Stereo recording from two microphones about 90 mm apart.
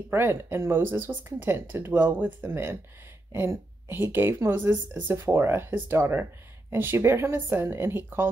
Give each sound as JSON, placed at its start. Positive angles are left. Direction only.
{"t": 0.1, "sound": "a woman's voice", "side_deg": -25}